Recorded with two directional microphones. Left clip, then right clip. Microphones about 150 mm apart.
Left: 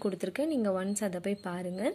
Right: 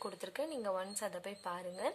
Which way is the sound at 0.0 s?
20° left (ahead or behind).